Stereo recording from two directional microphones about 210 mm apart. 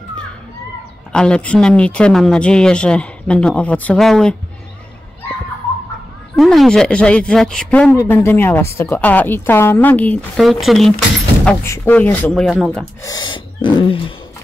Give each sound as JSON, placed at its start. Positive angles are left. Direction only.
{"t": 1.1, "sound": "speech", "side_deg": 5}
{"t": 6.3, "sound": "a woman's voice", "side_deg": 0}
{"t": 11.4, "sound": "speech", "side_deg": 10}
{"t": 13.0, "sound": "gasp", "side_deg": 20}